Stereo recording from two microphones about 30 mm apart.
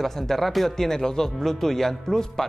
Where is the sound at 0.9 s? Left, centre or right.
Centre.